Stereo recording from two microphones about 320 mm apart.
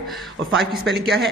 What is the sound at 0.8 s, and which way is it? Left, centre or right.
Speech, right.